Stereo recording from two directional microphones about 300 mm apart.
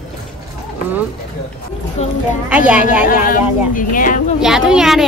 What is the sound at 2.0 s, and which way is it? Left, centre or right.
Speech, left.